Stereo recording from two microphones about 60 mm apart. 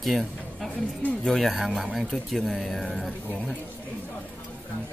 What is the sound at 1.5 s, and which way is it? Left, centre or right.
Speech, centre.